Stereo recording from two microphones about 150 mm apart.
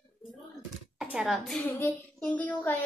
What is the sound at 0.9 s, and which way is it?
Speech, 5° right (ahead or behind).